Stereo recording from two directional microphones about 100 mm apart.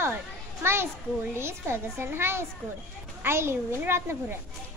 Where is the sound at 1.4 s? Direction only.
25° right (ahead or behind).